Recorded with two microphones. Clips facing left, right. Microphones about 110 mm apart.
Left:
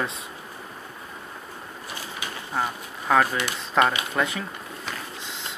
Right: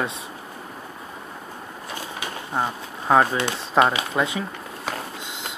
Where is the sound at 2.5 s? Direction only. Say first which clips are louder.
Right 2 dB; 25° right (ahead or behind).